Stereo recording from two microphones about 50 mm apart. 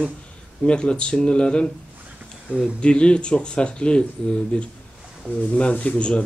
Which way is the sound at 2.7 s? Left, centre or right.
Left.